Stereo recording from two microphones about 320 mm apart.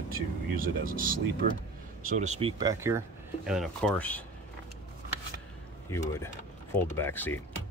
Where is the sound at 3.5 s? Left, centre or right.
Centre.